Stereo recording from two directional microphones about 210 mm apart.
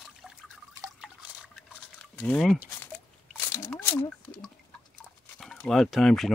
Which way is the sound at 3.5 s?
10° left (ahead or behind).